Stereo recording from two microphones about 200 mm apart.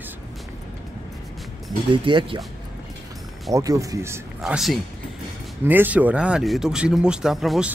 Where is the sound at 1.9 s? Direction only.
25° right (ahead or behind).